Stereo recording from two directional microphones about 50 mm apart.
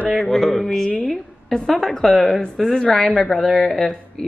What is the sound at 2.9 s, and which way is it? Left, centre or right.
Speech, centre.